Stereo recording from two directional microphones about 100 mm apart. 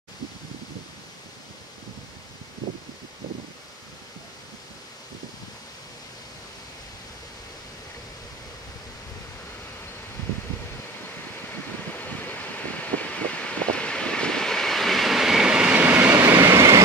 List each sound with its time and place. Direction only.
11.9 s vehicle: 20° left (ahead or behind); by 15.8 s 10° right (ahead or behind)
15.8 s vehicle: 20° right (ahead or behind)